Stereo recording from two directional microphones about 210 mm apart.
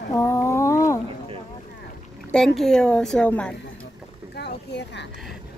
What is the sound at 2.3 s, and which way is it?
Speech, centre (ahead or behind).